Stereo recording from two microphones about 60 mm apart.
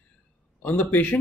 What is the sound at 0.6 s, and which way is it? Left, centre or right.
Speech, left.